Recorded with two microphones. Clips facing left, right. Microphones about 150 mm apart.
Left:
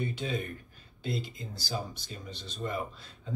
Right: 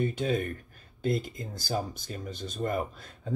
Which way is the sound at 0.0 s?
45° right (ahead or behind).